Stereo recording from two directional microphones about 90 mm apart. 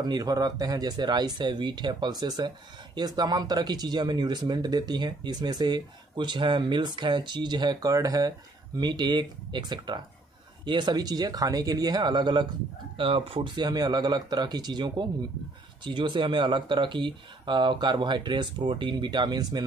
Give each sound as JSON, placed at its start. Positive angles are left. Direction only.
{"t": 0.0, "sound": "speech", "side_deg": -45}
{"t": 12.9, "sound": "speech", "side_deg": -80}